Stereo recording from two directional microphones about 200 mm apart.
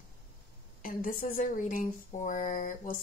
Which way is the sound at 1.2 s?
45° left (ahead or behind).